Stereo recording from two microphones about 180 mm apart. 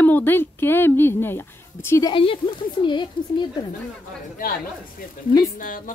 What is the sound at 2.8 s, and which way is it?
Speech, 25° left (ahead or behind).